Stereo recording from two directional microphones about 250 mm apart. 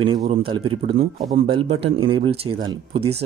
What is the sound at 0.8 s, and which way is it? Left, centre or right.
Speech, right.